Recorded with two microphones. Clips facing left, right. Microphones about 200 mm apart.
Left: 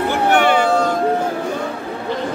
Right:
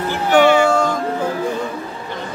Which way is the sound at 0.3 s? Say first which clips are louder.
Right 4 dB; 55° left (ahead or behind).